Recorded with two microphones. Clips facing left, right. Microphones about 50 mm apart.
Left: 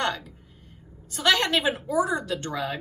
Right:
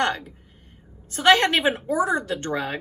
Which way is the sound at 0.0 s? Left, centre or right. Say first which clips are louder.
Right 4 dB; right.